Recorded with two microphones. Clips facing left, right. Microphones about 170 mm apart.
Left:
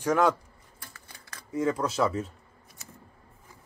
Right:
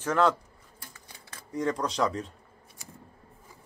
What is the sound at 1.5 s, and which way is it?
Speech, 5° left (ahead or behind).